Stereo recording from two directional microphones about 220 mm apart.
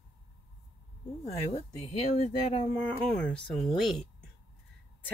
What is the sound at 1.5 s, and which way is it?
Speech, 30° left (ahead or behind).